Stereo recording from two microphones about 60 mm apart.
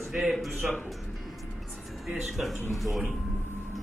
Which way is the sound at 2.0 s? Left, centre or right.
Centre.